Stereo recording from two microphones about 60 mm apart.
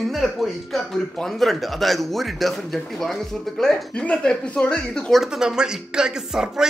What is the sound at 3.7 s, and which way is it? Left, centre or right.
Speech, centre.